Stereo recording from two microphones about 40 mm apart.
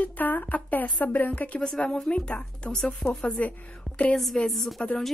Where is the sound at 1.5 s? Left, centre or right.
Left.